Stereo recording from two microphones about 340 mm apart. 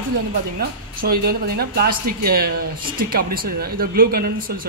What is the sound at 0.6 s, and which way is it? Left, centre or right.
Speech, right.